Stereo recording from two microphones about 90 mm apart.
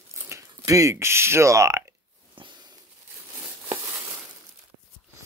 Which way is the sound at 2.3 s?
60° right (ahead or behind).